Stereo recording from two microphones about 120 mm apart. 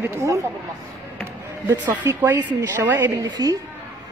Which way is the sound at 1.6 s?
15° right (ahead or behind).